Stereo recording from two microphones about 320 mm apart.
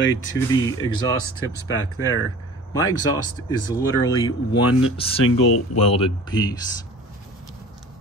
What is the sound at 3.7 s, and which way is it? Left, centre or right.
Speech, centre.